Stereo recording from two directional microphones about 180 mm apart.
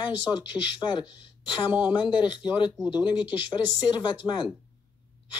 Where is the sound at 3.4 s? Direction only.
25° left (ahead or behind).